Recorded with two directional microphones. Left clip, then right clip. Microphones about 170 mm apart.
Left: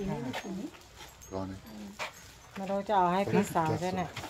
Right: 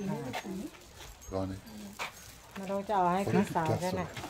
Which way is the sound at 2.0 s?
25° right (ahead or behind).